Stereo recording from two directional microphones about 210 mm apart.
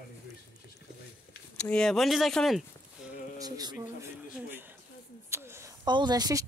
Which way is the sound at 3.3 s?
20° right (ahead or behind).